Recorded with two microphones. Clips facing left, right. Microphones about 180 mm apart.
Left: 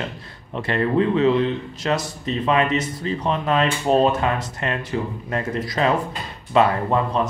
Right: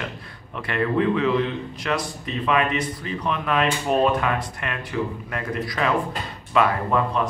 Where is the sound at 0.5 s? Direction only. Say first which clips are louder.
Left 3 dB; 30° left (ahead or behind).